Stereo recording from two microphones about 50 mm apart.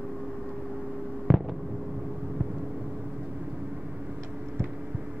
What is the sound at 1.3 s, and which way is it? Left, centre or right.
Fireworks, centre.